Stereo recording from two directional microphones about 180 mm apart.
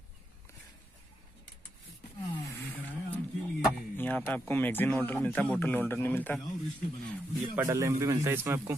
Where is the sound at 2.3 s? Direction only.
15° left (ahead or behind).